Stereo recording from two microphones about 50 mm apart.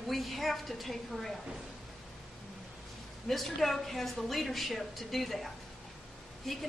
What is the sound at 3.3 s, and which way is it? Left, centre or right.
A woman's voice, centre.